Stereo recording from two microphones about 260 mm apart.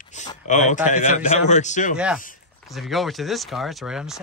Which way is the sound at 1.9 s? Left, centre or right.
Centre.